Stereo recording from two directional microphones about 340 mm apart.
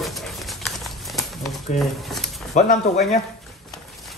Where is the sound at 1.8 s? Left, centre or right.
Centre.